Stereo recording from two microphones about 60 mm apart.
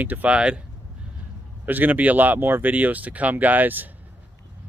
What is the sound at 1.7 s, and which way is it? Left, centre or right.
Speech, right.